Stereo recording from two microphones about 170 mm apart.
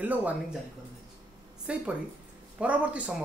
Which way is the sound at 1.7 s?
5° right (ahead or behind).